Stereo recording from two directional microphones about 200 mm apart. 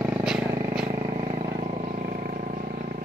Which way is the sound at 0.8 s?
30° right (ahead or behind).